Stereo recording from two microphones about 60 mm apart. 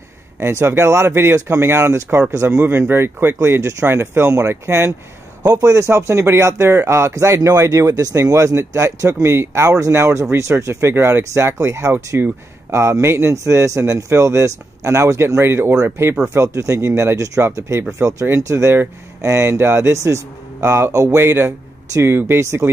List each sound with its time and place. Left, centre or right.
0.4 s speech: right
2.9 s speech: right
5.4 s speech: right
12.1 s speech: right
12.7 s speech: right
16.3 s speech: right
21.2 s speech: right